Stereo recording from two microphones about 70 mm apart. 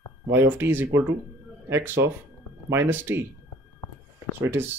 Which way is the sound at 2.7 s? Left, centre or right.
Right.